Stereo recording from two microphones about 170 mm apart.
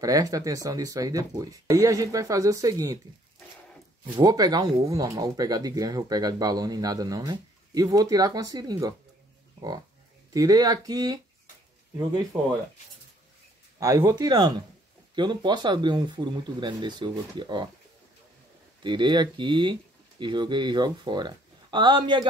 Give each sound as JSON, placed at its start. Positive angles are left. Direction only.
{"t": 0.0, "sound": "speech", "side_deg": -20}
{"t": 4.2, "sound": "speech", "side_deg": -20}
{"t": 10.3, "sound": "speech", "side_deg": -20}
{"t": 13.7, "sound": "speech", "side_deg": -20}
{"t": 18.8, "sound": "speech", "side_deg": -25}